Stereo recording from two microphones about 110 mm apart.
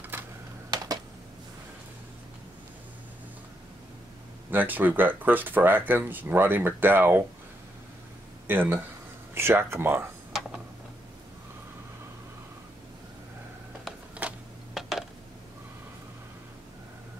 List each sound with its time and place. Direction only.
0.1 s coin: 20° right (ahead or behind)
4.5 s speech: 15° right (ahead or behind)
8.5 s speech: 20° right (ahead or behind)
13.8 s a sound: 5° right (ahead or behind)